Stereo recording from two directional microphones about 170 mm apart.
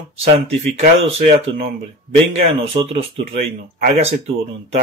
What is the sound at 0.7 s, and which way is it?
Speech, 35° right (ahead or behind).